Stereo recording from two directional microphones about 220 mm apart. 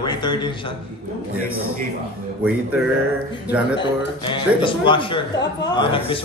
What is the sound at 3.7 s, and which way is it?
Speech, 20° left (ahead or behind).